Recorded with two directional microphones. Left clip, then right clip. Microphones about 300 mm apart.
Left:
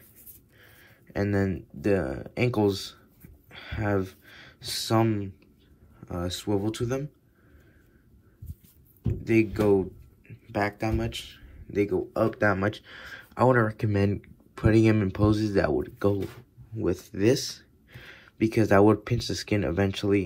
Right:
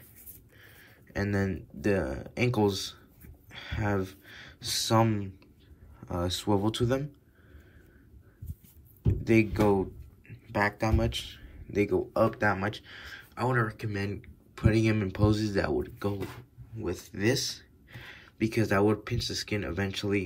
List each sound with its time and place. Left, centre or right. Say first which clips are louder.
0.6 s speech: even; centre
9.2 s speech: left 1 dB; centre